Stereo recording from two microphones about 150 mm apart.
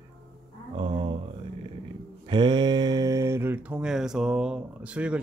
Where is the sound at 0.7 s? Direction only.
35° right (ahead or behind).